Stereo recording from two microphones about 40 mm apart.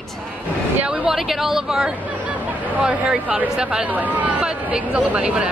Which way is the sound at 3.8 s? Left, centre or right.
Right.